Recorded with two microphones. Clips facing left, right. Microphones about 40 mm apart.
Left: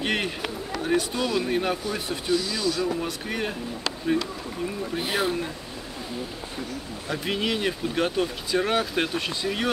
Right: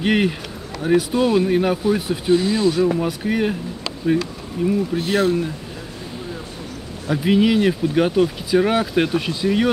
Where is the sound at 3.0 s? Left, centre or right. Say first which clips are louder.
Right 8 dB; centre.